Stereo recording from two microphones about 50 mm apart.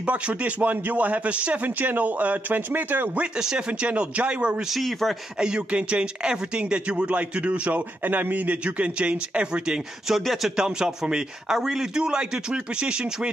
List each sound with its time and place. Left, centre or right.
0.0 s speech: right
3.3 s a man's voice: centre
3.8 s speech: right
4.6 s speech: centre
5.4 s speech: centre
10.1 s speech: centre
10.5 s a man's voice: centre